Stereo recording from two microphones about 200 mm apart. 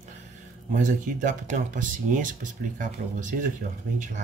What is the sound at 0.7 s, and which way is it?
Speech, 40° right (ahead or behind).